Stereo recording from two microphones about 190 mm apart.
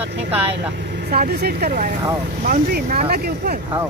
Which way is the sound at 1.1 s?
55° right (ahead or behind).